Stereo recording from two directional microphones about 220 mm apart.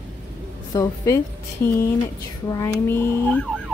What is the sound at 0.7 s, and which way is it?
Speech, 15° left (ahead or behind).